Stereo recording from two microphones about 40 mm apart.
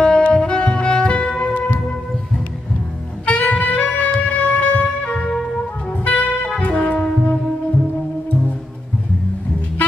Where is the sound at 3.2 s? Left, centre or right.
Left.